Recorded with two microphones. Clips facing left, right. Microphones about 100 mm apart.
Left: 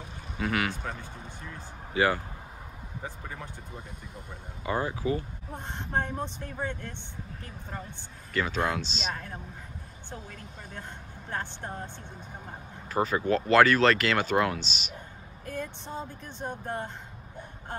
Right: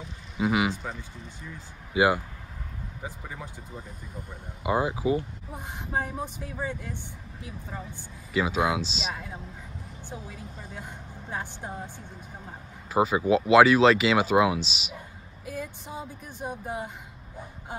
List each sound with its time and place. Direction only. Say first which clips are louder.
0.4 s speech: right 4 dB; 10° right (ahead or behind)
2.0 s speech: right 3 dB; 15° right (ahead or behind)
5.5 s speech: even; 5° right (ahead or behind)
8.3 s speech: right 3 dB; 5° right (ahead or behind)